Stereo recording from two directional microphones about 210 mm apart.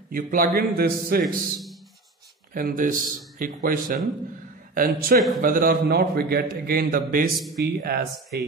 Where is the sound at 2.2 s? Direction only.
45° right (ahead or behind).